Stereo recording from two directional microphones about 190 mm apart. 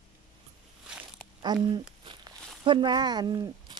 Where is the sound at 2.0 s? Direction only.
25° right (ahead or behind).